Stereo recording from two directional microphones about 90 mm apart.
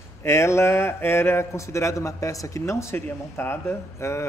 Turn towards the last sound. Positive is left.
turn(degrees=30)  # may be behind; listen again after turning